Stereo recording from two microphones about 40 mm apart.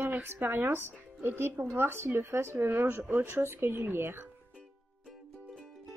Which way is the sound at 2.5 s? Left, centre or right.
Right.